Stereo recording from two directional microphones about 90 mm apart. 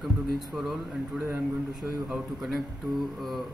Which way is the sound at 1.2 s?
20° right (ahead or behind).